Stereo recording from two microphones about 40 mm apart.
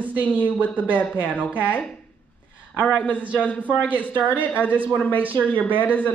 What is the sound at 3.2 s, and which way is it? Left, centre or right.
Speech, right.